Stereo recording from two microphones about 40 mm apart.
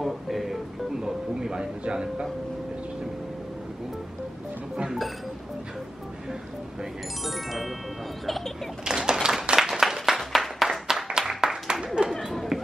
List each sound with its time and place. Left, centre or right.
0.0 s music: centre
1.3 s speech: centre
7.2 s music: centre
8.3 s a sound: centre
8.8 s a sound: centre
9.6 s applause: centre
11.2 s clapping: centre
12.3 s chatter: centre